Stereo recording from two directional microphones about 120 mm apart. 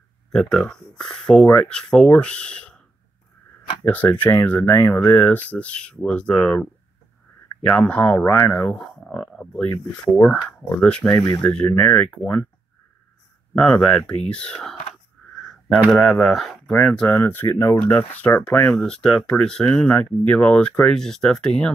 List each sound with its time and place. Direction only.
0.3 s speech: 5° left (ahead or behind)
3.8 s speech: 15° left (ahead or behind)
11.1 s speech: 35° left (ahead or behind)
11.4 s speech: 10° left (ahead or behind)
13.6 s speech: 10° left (ahead or behind)
15.8 s speech: centre (ahead or behind)
17.1 s speech: 20° left (ahead or behind)